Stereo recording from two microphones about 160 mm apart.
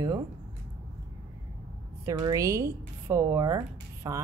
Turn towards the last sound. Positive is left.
turn(degrees=-20)  # may be behind; listen again after turning